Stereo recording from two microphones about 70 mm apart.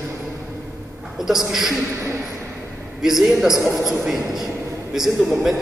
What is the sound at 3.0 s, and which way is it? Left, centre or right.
A man's voice, centre.